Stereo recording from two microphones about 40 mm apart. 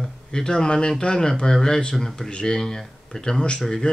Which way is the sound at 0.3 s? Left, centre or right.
Centre.